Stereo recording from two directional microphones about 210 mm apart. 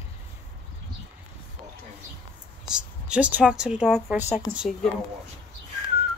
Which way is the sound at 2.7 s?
5° right (ahead or behind).